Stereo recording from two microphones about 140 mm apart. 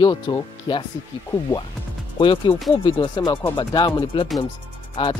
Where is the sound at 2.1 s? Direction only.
35° left (ahead or behind).